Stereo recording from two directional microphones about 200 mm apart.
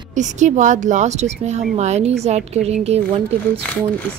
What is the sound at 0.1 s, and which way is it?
Speech, 35° right (ahead or behind).